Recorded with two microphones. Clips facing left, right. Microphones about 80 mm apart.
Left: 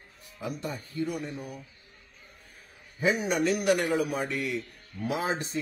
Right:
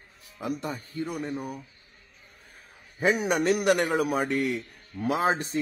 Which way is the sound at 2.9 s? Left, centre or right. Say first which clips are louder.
Right 2 dB; right.